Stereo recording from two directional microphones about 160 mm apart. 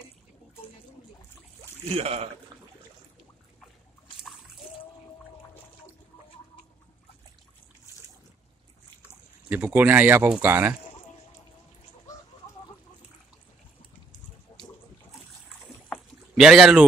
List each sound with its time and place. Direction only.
2.0 s speech: 40° right (ahead or behind)
2.5 s a sound: 25° right (ahead or behind)
9.5 s speech: 10° right (ahead or behind)
16.3 s speech: 5° right (ahead or behind)